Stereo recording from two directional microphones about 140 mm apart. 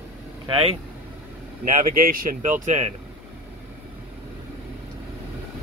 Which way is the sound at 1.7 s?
80° right.